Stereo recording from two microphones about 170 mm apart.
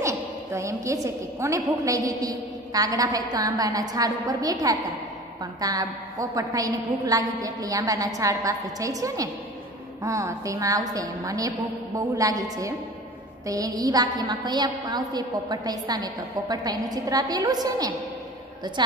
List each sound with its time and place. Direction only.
0.0 s a woman's voice: 15° right (ahead or behind)